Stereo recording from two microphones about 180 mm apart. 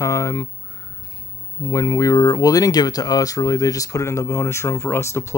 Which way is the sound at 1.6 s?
20° left (ahead or behind).